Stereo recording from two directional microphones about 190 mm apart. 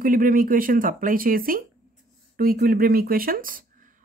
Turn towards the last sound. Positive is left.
turn(degrees=-45)  # may be behind; listen again after turning